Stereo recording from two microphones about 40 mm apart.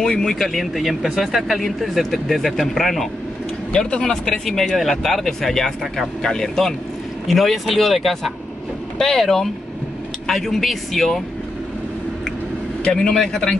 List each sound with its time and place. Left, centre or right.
0.0 s speech: centre
4.0 s speech: centre
4.5 s speech: centre
7.2 s speech: centre
8.9 s speech: centre
12.9 s speech: centre